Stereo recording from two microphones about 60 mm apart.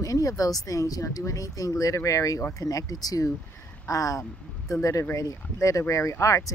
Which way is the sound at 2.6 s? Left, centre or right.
Left.